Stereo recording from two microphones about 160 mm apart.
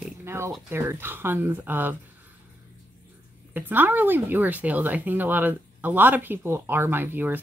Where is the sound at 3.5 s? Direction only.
10° right (ahead or behind).